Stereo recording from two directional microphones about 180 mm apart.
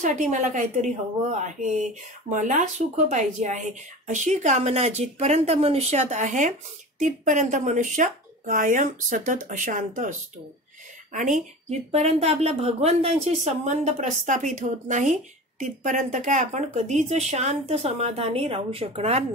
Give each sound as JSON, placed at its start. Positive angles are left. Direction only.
{"t": 0.0, "sound": "speech", "side_deg": -45}
{"t": 11.1, "sound": "speech", "side_deg": -45}